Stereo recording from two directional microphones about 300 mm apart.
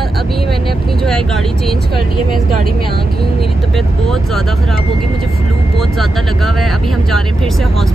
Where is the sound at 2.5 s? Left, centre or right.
Right.